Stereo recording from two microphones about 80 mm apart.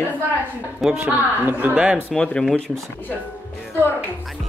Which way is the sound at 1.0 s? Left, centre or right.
Right.